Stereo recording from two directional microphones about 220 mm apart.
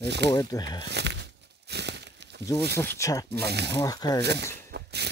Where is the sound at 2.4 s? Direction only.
50° right (ahead or behind).